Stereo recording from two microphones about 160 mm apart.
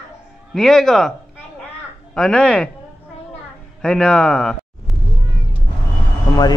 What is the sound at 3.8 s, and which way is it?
Speech, 5° left (ahead or behind).